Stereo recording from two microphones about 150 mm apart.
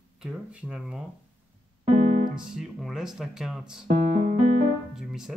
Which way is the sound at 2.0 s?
55° right (ahead or behind).